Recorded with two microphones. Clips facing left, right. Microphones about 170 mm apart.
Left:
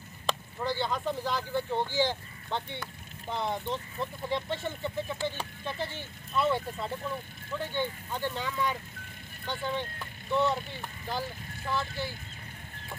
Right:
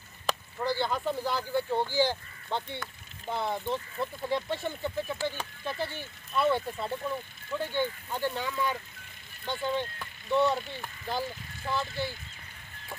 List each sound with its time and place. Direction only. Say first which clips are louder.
0.3 s speech: right 1 dB; 10° right (ahead or behind)